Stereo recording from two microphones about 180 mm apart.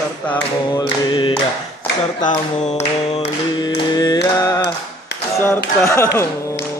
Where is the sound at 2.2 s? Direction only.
45° left (ahead or behind).